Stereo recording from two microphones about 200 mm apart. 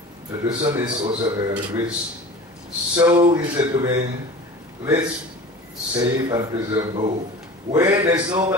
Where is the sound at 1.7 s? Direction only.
10° right (ahead or behind).